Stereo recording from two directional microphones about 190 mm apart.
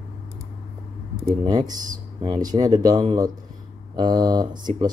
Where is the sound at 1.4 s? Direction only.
20° right (ahead or behind).